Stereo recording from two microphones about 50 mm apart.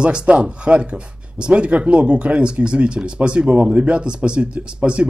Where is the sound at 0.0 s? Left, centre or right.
Right.